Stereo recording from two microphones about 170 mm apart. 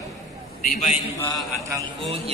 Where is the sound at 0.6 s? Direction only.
55° left (ahead or behind).